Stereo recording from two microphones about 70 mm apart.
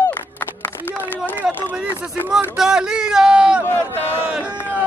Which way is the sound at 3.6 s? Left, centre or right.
Left.